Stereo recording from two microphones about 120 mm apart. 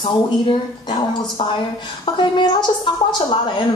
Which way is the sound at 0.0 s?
45° left (ahead or behind).